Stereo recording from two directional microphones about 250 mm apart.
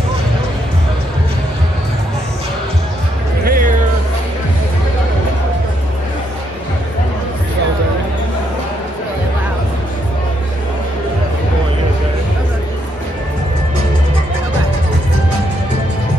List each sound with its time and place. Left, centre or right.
3.4 s music: right